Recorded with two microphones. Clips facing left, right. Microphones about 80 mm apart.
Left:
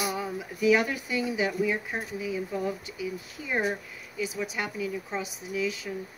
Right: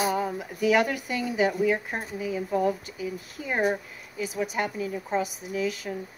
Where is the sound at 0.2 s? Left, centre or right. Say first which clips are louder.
Right 1 dB; right.